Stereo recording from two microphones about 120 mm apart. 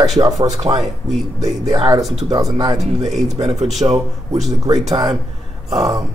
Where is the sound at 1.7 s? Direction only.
35° right (ahead or behind).